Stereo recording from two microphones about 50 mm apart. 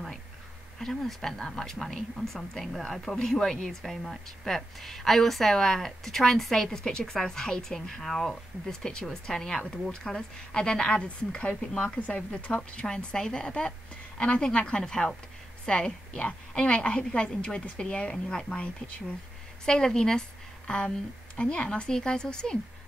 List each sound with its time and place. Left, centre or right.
0.7 s speech: centre; by 11.7 s left
11.7 s speech: centre
12.1 s speech: left
18.1 s speech: centre
18.6 s speech: left
19.6 s a woman's voice: centre